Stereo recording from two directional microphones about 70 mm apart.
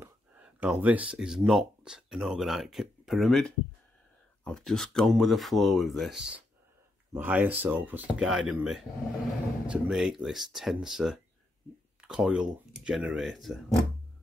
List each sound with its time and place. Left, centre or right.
0.7 s speech: right; by 6.1 s centre
7.2 s speech: right
8.2 s speech: centre